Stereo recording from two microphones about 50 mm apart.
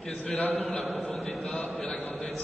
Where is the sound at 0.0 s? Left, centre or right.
Centre.